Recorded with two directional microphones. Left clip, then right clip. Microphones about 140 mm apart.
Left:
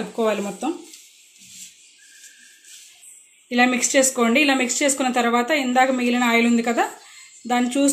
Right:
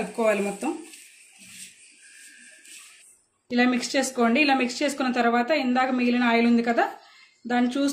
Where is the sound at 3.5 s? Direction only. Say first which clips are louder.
Left 5 dB; 45° left (ahead or behind).